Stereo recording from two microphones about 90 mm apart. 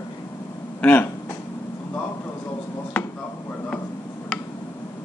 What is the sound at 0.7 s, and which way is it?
Speech, 15° left (ahead or behind).